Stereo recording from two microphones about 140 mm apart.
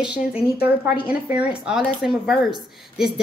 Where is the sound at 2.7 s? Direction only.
Centre (ahead or behind).